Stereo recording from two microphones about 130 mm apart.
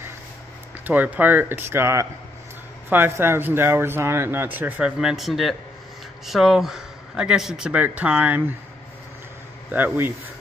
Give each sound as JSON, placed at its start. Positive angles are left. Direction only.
{"t": 0.8, "sound": "speech", "side_deg": -10}
{"t": 9.7, "sound": "speech", "side_deg": -15}